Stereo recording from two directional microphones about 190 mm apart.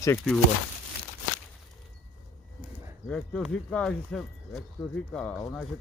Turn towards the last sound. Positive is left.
turn(degrees=5)  # may be behind; listen again after turning